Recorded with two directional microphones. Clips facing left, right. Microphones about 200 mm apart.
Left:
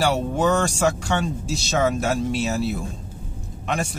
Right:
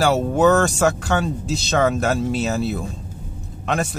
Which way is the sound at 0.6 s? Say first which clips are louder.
Right 3 dB; centre (ahead or behind).